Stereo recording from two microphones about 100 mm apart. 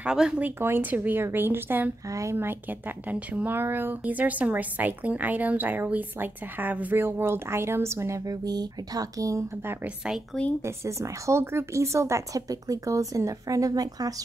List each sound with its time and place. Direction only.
0.0 s speech: 10° right (ahead or behind)
0.6 s a woman's voice: 20° right (ahead or behind)
3.1 s a woman's voice: 15° right (ahead or behind)
8.5 s speech: 40° right (ahead or behind)
10.6 s speech: 30° right (ahead or behind)